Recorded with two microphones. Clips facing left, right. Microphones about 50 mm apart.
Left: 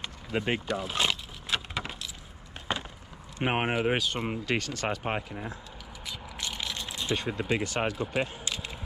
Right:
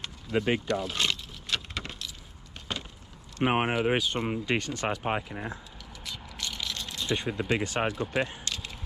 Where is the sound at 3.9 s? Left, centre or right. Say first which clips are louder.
Right 2 dB; centre.